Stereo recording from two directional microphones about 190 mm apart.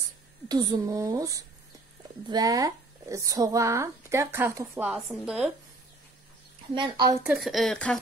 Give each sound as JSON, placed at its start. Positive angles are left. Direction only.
{"t": 0.5, "sound": "a woman's voice", "side_deg": -20}
{"t": 6.7, "sound": "a woman's voice", "side_deg": -20}
{"t": 7.2, "sound": "speech", "side_deg": 0}